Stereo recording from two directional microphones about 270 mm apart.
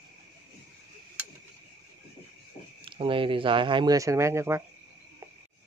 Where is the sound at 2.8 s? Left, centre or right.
Centre.